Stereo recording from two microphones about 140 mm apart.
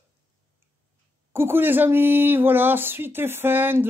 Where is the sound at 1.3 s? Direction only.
15° right (ahead or behind).